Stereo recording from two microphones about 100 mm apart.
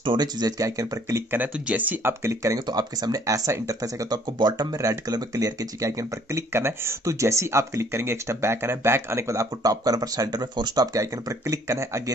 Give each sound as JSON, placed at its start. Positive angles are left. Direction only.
{"t": 0.0, "sound": "speech", "side_deg": -45}
{"t": 1.3, "sound": "speech", "side_deg": -15}
{"t": 2.6, "sound": "speech", "side_deg": -45}